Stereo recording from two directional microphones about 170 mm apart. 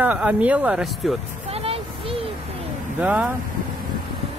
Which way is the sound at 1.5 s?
35° right (ahead or behind).